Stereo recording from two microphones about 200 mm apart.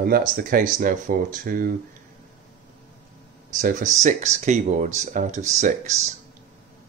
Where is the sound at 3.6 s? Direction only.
40° right (ahead or behind).